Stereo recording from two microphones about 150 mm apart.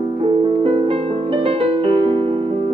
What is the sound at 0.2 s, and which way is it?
Music, 40° right (ahead or behind).